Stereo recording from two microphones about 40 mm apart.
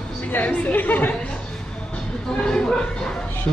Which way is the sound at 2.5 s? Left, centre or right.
Centre.